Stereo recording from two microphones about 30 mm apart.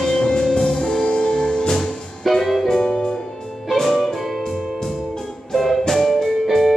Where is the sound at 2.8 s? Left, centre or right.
Left.